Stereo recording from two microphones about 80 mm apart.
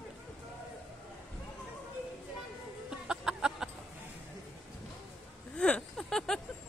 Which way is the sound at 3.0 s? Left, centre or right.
Centre.